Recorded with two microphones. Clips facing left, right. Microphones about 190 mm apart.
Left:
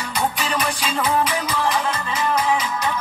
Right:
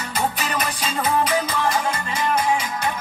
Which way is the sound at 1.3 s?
30° right (ahead or behind).